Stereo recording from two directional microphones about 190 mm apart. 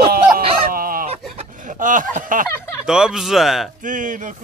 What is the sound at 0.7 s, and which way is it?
Fowl, 50° right (ahead or behind).